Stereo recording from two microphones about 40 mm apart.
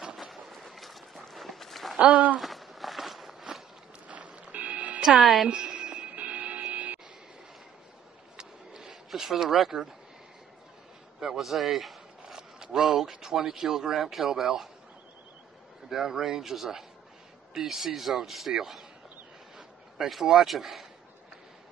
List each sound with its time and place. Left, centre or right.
0.2 s a sound: centre
1.3 s run: centre
2.0 s speech: right
2.3 s walk: centre
4.1 s a sound: right
5.4 s music: right
8.4 s a sound: centre
9.1 s speech: centre
11.1 s a man's voice: centre
11.4 s a sound: centre
12.4 s speech: centre
15.9 s speech: centre
20.1 s speech: centre